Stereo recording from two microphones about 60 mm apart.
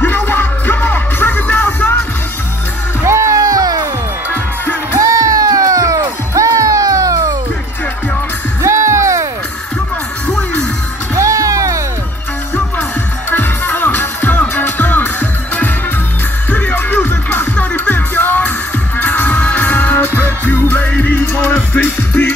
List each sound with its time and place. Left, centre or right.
0.0 s music: left
3.0 s music: right
4.9 s music: right
8.6 s music: right
11.1 s music: right
13.3 s music: left